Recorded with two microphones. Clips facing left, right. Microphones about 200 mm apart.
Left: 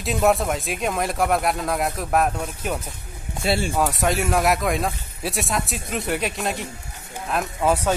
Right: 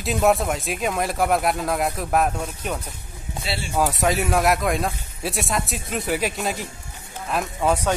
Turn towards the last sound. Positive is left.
turn(degrees=5)  # may be behind; listen again after turning